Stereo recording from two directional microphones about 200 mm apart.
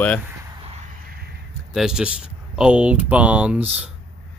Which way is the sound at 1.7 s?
5° right (ahead or behind).